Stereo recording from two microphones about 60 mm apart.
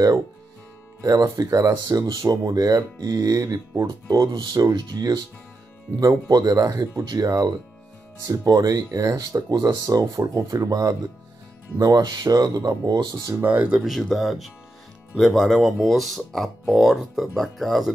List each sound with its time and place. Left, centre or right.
1.3 s speech: right
8.2 s speech: right
11.8 s speech: right
13.4 s speech: right
13.7 s speech: centre